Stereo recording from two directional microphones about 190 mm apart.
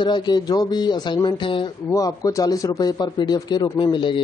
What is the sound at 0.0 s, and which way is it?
Speech, 25° left (ahead or behind).